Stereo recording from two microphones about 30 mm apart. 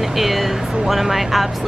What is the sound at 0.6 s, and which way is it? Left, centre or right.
Speech, right.